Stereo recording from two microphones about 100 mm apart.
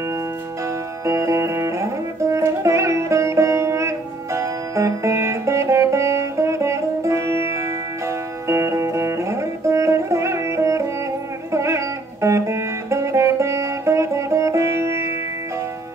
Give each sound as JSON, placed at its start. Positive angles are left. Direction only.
{"t": 1.0, "sound": "music", "side_deg": -30}